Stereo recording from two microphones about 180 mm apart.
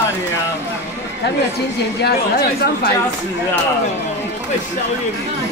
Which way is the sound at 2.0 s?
65° left (ahead or behind).